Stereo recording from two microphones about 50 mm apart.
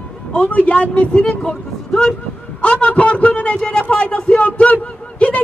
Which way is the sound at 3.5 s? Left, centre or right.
Centre.